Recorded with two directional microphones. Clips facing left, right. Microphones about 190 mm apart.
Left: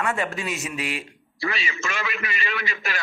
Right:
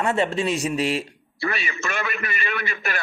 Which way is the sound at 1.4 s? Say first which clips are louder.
Right 1 dB; 55° right (ahead or behind).